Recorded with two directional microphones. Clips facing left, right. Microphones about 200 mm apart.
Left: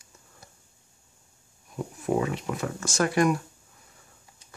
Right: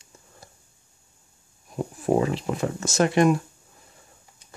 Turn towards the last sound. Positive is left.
turn(degrees=-25)  # may be behind; listen again after turning